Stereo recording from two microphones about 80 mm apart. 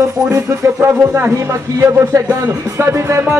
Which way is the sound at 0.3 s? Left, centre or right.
Right.